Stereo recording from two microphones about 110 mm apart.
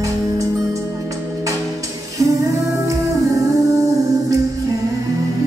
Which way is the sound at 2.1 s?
30° right (ahead or behind).